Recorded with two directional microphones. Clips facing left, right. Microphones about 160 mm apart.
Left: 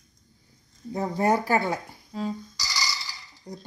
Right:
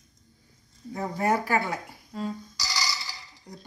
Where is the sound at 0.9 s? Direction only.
25° left (ahead or behind).